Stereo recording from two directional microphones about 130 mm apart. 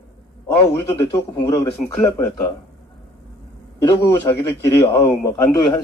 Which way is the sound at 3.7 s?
15° left (ahead or behind).